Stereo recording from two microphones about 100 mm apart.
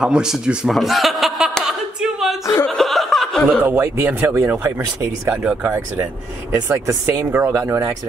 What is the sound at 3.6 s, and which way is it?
Speech, 20° right (ahead or behind).